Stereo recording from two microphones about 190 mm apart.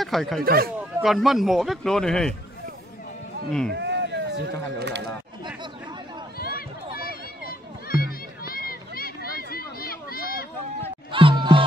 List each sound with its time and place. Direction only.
0.0 s speech: centre (ahead or behind)
0.4 s speech: 50° right (ahead or behind)
0.7 s a man's voice: centre (ahead or behind)
3.7 s a sound: 65° right (ahead or behind)
6.3 s run: 50° left (ahead or behind)
7.9 s music: 50° left (ahead or behind)
9.5 s a sound: 50° left (ahead or behind)
11.1 s music: 25° right (ahead or behind)